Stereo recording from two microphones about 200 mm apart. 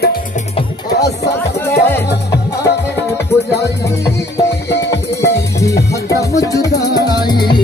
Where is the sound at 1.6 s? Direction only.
10° left (ahead or behind).